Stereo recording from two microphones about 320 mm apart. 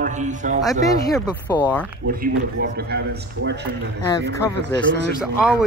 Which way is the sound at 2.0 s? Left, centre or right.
Right.